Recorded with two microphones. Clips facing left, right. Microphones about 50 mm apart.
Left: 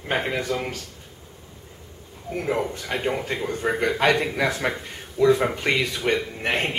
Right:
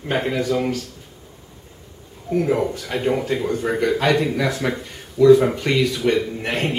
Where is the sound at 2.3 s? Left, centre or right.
Centre.